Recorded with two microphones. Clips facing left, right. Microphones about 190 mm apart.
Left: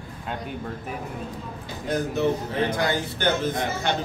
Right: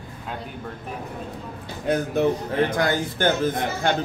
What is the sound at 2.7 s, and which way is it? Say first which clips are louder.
A man's voice: right 2 dB; 50° right (ahead or behind).